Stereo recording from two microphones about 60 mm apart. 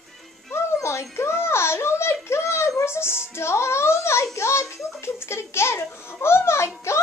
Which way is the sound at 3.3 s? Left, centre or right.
Left.